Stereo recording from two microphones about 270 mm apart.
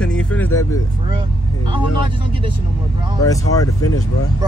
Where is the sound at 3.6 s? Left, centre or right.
Left.